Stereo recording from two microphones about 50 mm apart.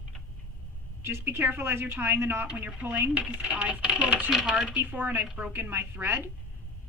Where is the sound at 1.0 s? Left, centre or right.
Right.